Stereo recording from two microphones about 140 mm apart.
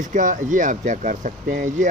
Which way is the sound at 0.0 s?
65° right (ahead or behind).